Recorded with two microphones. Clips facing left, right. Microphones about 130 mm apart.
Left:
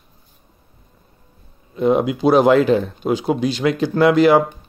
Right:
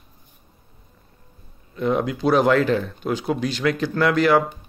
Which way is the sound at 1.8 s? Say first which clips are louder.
Left 5 dB; 20° left (ahead or behind).